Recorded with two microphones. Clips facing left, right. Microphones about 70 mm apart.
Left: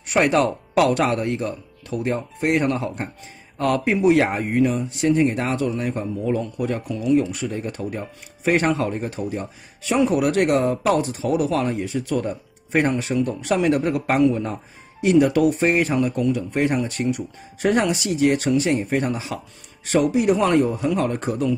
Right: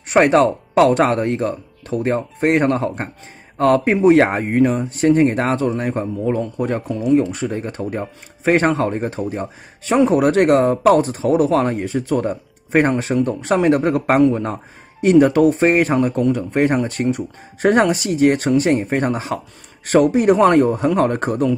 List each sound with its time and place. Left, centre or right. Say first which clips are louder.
0.1 s speech: right 5 dB; right